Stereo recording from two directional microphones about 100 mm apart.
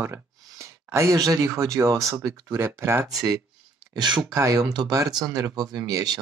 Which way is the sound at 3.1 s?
35° right (ahead or behind).